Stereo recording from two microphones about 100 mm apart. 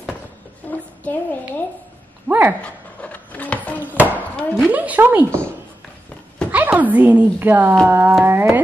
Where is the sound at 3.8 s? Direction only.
15° right (ahead or behind).